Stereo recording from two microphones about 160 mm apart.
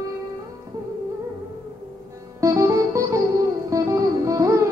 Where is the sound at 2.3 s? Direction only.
20° right (ahead or behind).